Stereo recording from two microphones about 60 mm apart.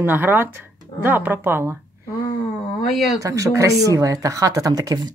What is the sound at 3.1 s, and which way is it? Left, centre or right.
Speech, right.